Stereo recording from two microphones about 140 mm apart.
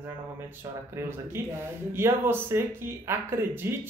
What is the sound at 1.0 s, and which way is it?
Speech, 15° right (ahead or behind).